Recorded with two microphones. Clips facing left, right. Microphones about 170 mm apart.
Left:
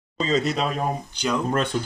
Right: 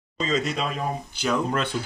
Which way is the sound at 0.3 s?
35° left (ahead or behind).